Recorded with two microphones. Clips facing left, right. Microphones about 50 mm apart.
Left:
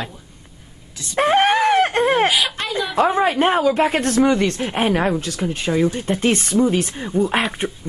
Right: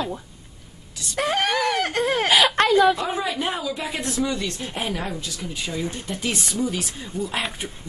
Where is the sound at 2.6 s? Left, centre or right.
Right.